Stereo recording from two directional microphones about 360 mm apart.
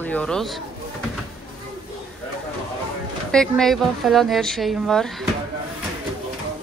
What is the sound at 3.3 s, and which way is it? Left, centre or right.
A woman's voice, centre.